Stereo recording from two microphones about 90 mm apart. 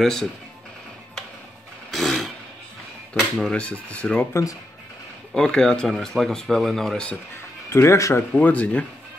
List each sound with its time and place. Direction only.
0.0 s speech: 5° left (ahead or behind)
1.9 s a sound: 5° left (ahead or behind)
3.2 s speech: 5° left (ahead or behind)
4.3 s speech: 35° left (ahead or behind)
5.3 s speech: 5° left (ahead or behind)
7.7 s speech: 30° left (ahead or behind)
8.3 s speech: 15° left (ahead or behind)